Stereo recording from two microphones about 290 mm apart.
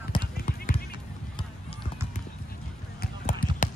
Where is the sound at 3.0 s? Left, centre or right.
Left.